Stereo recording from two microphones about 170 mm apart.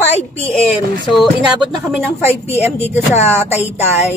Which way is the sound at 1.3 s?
Centre (ahead or behind).